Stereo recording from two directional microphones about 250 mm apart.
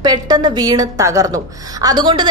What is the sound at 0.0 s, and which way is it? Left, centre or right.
A woman's voice, centre.